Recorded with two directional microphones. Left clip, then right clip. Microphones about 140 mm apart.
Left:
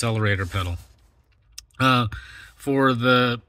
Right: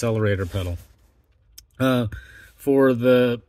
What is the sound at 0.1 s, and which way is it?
Speech, 25° right (ahead or behind).